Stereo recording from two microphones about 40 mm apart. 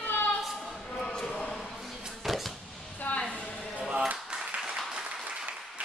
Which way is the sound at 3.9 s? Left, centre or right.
Right.